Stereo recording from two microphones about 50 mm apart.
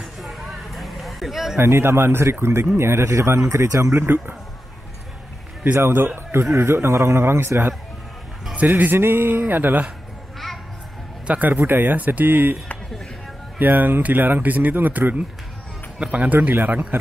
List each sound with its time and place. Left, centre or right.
0.0 s a sound: centre
1.6 s a man's voice: right
3.4 s speech: right
3.9 s speech: right
5.6 s a man's voice: right
8.5 s speech: right
8.9 s speech: right
11.2 s a man's voice: right
11.5 s speech: right
13.6 s speech: right
16.0 s speech: right
16.3 s speech: right